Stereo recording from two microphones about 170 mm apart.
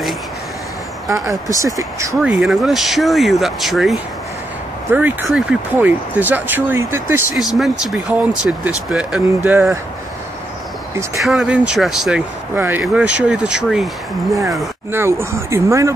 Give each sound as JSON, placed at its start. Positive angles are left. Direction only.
{"t": 1.1, "sound": "speech", "side_deg": -20}
{"t": 2.1, "sound": "speech", "side_deg": 0}
{"t": 4.9, "sound": "speech", "side_deg": -10}
{"t": 7.3, "sound": "speech", "side_deg": 0}
{"t": 11.1, "sound": "speech", "side_deg": 0}
{"t": 14.9, "sound": "speech", "side_deg": -15}